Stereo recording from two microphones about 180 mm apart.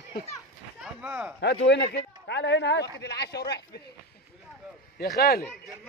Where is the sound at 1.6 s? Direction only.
75° left (ahead or behind).